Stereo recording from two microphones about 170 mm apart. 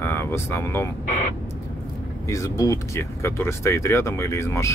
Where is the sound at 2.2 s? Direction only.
20° left (ahead or behind).